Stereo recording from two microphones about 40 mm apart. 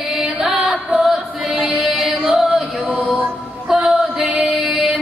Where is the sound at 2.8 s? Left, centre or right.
Right.